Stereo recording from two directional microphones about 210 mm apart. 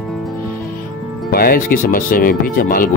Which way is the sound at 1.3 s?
45° left (ahead or behind).